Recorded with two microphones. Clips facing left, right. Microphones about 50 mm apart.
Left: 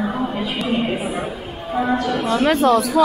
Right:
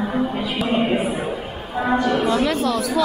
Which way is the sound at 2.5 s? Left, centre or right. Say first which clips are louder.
Left 6 dB; left.